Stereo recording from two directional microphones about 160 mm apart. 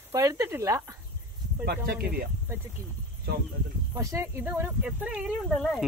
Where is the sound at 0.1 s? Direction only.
20° right (ahead or behind).